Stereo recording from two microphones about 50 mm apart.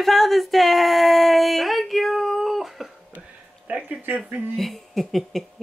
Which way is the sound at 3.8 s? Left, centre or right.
Right.